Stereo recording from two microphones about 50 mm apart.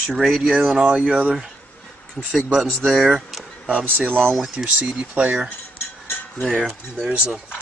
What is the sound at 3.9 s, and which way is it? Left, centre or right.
Speech, right.